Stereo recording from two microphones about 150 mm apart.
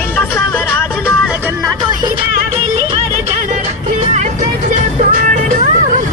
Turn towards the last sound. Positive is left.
turn(degrees=-60)  # may be behind; listen again after turning